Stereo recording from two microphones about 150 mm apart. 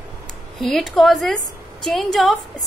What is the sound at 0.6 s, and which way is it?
A woman's voice, centre (ahead or behind).